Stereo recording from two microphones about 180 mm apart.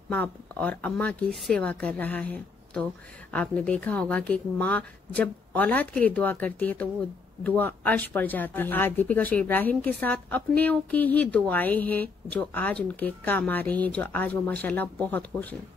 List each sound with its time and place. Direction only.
0.1 s speech: 10° left (ahead or behind)